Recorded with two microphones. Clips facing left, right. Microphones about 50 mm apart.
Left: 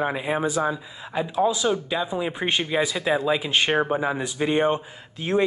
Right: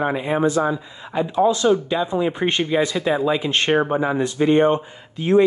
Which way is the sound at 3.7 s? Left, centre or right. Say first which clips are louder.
Right 3 dB; centre.